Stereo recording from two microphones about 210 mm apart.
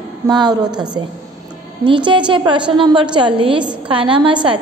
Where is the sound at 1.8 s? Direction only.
20° right (ahead or behind).